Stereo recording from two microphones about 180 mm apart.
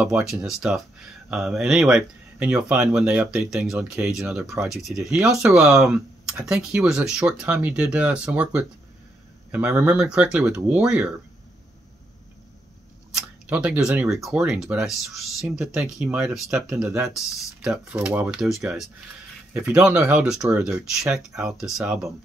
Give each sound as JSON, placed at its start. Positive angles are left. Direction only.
{"t": 0.0, "sound": "speech", "side_deg": 0}
{"t": 3.7, "sound": "speech", "side_deg": -15}
{"t": 4.1, "sound": "speech", "side_deg": 0}
{"t": 13.1, "sound": "speech", "side_deg": -5}